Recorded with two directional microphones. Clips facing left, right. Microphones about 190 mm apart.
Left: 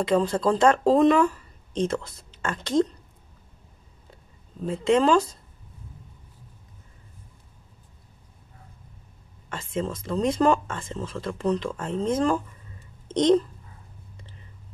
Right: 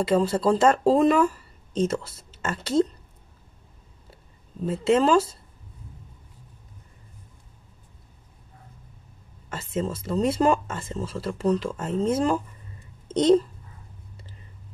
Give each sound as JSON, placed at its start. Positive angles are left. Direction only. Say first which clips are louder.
{"t": 0.0, "sound": "speech", "louder": "right 1 dB", "side_deg": -5}
{"t": 4.1, "sound": "speech", "louder": "right 2 dB", "side_deg": -5}
{"t": 9.5, "sound": "a child's voice", "louder": "right 1 dB", "side_deg": -5}